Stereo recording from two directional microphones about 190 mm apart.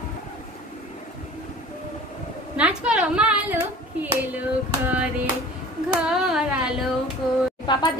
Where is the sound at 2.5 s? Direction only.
5° right (ahead or behind).